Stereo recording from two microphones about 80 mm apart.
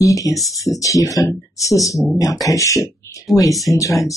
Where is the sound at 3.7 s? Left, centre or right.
Left.